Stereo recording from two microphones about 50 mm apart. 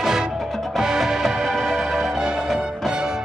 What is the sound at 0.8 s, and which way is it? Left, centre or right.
Music, centre.